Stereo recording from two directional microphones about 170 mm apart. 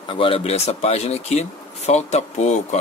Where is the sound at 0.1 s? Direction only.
35° left (ahead or behind).